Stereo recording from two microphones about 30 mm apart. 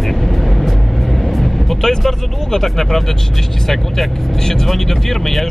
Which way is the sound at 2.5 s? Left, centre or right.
Centre.